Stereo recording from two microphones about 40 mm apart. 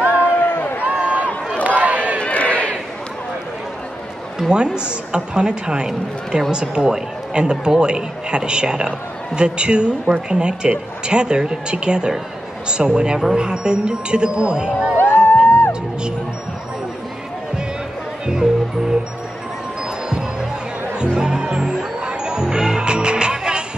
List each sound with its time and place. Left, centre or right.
0.2 s a sound: left
0.8 s a sound: right
1.6 s crowd: right
2.1 s crowd: left
4.5 s speech: right
15.0 s music: left
18.2 s music: centre
21.2 s music: right